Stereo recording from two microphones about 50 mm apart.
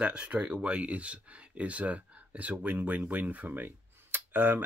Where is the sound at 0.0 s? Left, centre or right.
Right.